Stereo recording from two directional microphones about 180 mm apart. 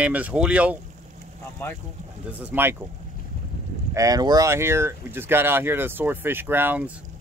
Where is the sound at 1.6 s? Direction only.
10° left (ahead or behind).